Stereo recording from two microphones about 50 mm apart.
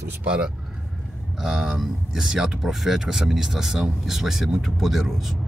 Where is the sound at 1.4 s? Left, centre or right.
Centre.